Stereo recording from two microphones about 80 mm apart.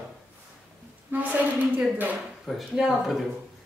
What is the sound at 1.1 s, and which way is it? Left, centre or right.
A woman's voice, right.